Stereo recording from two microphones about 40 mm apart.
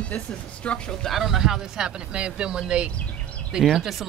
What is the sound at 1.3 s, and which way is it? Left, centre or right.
Speech, centre.